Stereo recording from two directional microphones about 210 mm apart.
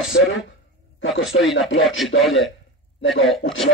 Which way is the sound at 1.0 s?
65° left (ahead or behind).